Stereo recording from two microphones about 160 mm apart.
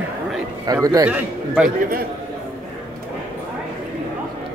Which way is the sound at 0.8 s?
20° right (ahead or behind).